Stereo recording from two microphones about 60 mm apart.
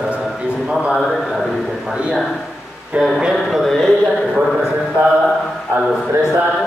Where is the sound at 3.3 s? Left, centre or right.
Centre.